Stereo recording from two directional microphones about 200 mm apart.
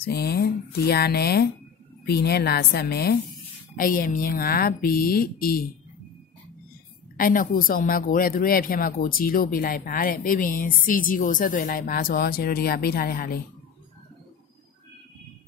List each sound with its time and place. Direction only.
0.0 s speech: 50° left (ahead or behind)
7.2 s speech: 45° left (ahead or behind)